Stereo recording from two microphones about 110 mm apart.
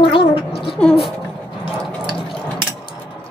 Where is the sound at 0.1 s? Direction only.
55° left (ahead or behind).